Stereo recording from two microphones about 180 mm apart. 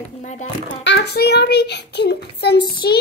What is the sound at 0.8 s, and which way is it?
A child's voice, 70° left (ahead or behind).